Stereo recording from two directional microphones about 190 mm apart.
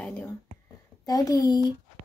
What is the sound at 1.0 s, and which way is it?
Speech, 20° left (ahead or behind).